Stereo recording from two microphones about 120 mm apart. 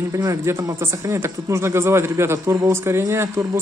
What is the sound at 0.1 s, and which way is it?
Speech, 30° right (ahead or behind).